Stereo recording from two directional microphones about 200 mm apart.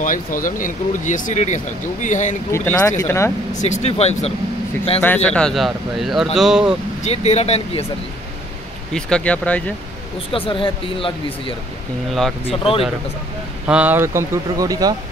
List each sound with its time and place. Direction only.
0.0 s speech: 40° left (ahead or behind)
2.5 s speech: 15° left (ahead or behind)
3.5 s speech: 35° left (ahead or behind)
5.0 s a man's voice: 5° left (ahead or behind)
7.0 s speech: 35° left (ahead or behind)
8.9 s speech: 5° left (ahead or behind)
10.3 s speech: 25° left (ahead or behind)
12.1 s a man's voice: centre (ahead or behind)
12.4 s speech: 30° left (ahead or behind)
13.7 s speech: 5° right (ahead or behind)